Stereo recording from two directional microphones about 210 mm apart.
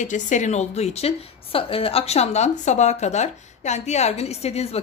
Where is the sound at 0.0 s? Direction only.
35° left (ahead or behind).